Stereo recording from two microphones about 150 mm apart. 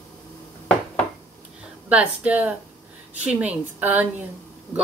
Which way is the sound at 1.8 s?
10° right (ahead or behind).